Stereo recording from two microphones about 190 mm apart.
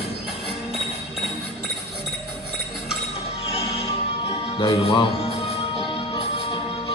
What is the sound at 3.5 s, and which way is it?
Music, 30° left (ahead or behind).